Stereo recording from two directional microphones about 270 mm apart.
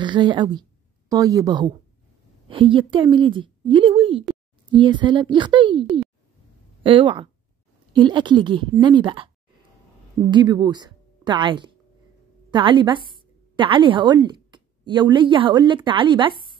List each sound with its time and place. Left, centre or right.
0.0 s a woman's voice: centre
10.3 s a woman's voice: centre